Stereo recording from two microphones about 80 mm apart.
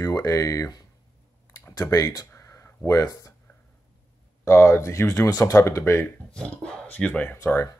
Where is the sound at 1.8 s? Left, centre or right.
Left.